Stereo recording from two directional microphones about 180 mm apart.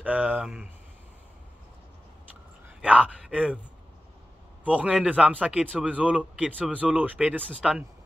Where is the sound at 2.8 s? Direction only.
5° right (ahead or behind).